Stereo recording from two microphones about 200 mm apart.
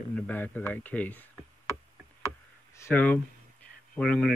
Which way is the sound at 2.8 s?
10° left (ahead or behind).